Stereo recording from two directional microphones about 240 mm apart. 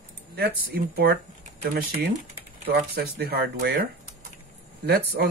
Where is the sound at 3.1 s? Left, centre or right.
Right.